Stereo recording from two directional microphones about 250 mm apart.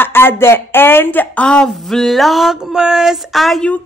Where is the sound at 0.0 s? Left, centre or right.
Centre.